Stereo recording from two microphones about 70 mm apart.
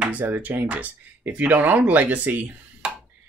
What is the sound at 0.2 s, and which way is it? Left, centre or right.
Speech, right.